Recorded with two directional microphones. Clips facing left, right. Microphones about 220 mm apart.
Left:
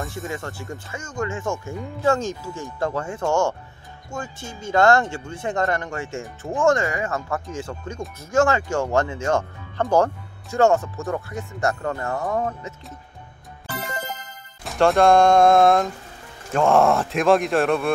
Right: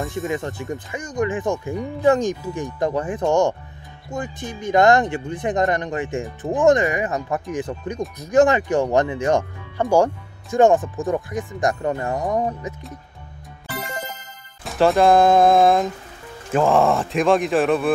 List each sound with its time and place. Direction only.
0.3 s speech: 20° right (ahead or behind)
14.6 s speech: centre (ahead or behind)